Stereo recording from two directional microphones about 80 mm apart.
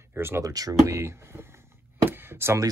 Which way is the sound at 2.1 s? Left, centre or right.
Right.